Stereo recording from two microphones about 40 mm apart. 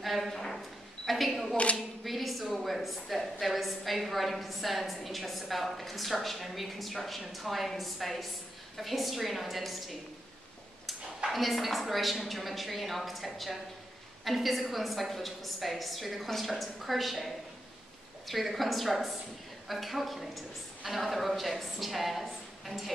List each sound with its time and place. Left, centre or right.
0.0 s a woman's voice: centre
11.3 s a woman's voice: centre